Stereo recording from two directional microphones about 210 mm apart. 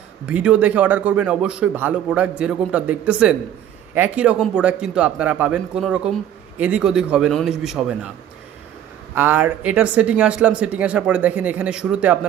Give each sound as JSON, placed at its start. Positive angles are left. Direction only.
{"t": 0.3, "sound": "a man's voice", "side_deg": -5}
{"t": 9.1, "sound": "speech", "side_deg": -10}